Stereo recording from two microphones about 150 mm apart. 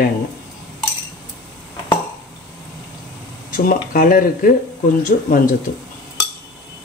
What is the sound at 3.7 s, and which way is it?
Speech, 70° left (ahead or behind).